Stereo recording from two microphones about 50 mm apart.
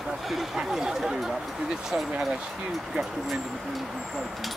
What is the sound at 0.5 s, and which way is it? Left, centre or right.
Speech, centre.